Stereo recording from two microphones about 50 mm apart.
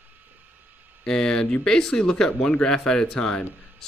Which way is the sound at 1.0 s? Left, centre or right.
Centre.